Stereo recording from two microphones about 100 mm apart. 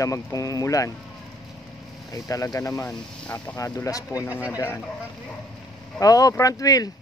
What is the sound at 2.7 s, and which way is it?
Speech, 10° left (ahead or behind).